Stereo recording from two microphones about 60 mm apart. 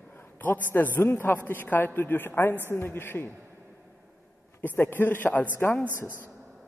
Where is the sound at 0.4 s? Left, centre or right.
Left.